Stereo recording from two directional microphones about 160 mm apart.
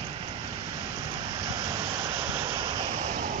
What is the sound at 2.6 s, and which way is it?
Vehicle, 30° right (ahead or behind).